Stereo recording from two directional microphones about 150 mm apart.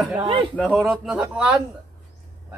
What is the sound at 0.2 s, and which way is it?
Speech, 35° right (ahead or behind).